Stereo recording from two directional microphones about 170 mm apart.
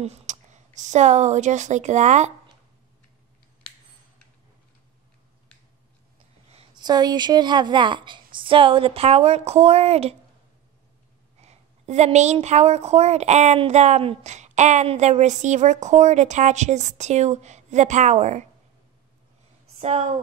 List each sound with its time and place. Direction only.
0.0 s speech: 40° right (ahead or behind)
6.5 s a woman's voice: 30° right (ahead or behind)
11.4 s a woman's voice: 40° right (ahead or behind)
19.8 s a woman's voice: 40° right (ahead or behind)